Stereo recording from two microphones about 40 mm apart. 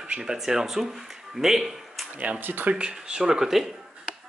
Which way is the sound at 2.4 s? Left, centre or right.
Right.